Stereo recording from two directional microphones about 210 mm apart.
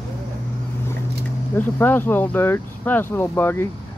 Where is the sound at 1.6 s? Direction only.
10° left (ahead or behind).